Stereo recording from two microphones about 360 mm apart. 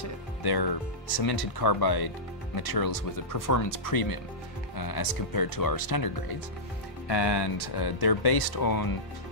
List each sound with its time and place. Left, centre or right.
0.4 s speech: left
7.1 s speech: left